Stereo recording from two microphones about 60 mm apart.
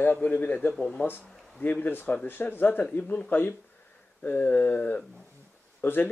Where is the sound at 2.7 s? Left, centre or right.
Left.